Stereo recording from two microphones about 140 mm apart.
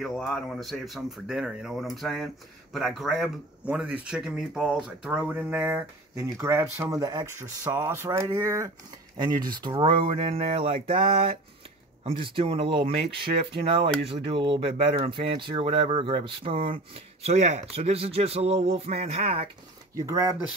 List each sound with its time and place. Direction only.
0.0 s speech: 5° left (ahead or behind); by 11.0 s 45° right (ahead or behind)
12.0 s speech: 40° right (ahead or behind)
20.0 s speech: 25° right (ahead or behind)